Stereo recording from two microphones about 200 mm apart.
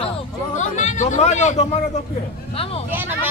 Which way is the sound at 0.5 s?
35° left (ahead or behind).